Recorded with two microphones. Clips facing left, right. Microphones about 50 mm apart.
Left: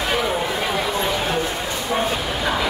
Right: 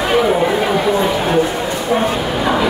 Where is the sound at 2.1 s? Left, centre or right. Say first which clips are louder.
Right 6 dB; centre.